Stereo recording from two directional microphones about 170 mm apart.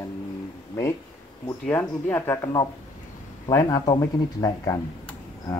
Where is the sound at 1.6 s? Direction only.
10° left (ahead or behind).